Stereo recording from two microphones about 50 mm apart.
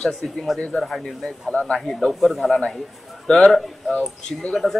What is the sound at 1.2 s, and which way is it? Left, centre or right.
Speech, centre.